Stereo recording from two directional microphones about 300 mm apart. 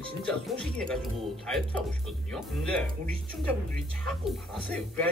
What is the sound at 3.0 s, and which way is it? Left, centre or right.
Speech, left.